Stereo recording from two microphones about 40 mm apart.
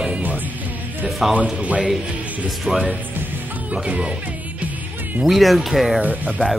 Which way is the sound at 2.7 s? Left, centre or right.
Centre.